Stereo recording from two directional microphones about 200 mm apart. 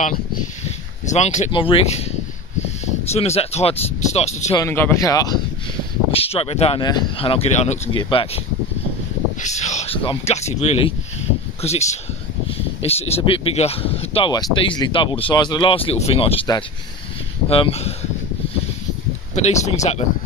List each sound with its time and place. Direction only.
0.7 s speech: 35° left (ahead or behind)
4.5 s speech: 15° left (ahead or behind)
6.1 s speech: 30° left (ahead or behind)
9.4 s a sound: 35° left (ahead or behind)
10.6 s speech: 30° left (ahead or behind)
19.3 s speech: 35° left (ahead or behind)